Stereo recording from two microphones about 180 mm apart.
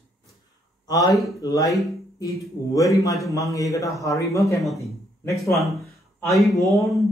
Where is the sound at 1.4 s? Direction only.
20° left (ahead or behind).